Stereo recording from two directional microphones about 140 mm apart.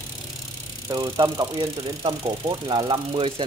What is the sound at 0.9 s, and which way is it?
A man's voice, 25° right (ahead or behind).